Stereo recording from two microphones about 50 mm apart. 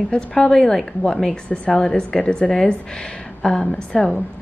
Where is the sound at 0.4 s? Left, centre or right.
Centre.